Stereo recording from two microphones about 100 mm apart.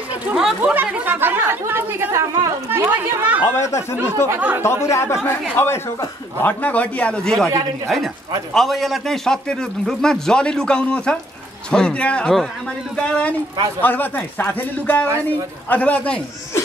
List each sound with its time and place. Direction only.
0.3 s a man's voice: 5° right (ahead or behind)
0.6 s speech: 15° right (ahead or behind)
3.5 s a man's voice: 30° left (ahead or behind)
4.3 s speech: 20° right (ahead or behind)
4.6 s a man's voice: 25° left (ahead or behind); by 7.4 s 10° left (ahead or behind)
8.5 s a man's voice: centre (ahead or behind)